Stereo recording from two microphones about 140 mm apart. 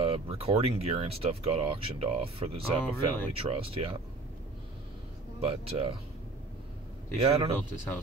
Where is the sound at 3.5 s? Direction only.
40° right (ahead or behind).